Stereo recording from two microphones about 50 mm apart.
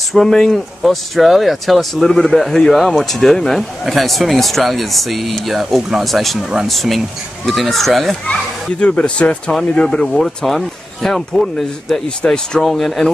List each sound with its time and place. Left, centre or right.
0.1 s speech: centre
8.3 s speech: left
9.9 s speech: centre